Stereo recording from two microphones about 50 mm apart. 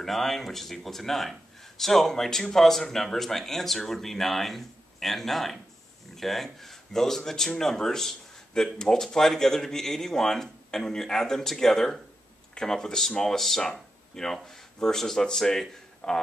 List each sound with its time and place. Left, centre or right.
0.0 s a man's voice: centre